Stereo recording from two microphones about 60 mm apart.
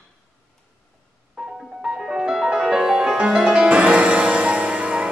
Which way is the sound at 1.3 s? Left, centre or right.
Centre.